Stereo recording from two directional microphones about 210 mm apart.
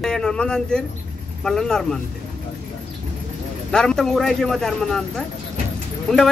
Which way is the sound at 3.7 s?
5° left (ahead or behind).